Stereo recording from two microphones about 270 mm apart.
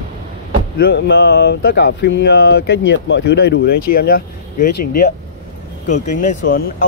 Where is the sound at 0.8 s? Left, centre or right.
Left.